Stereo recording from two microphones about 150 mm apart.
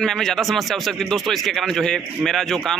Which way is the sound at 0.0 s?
5° left (ahead or behind).